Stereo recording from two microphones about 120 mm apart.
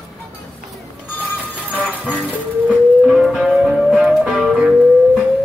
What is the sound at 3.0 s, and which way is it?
Music, centre (ahead or behind).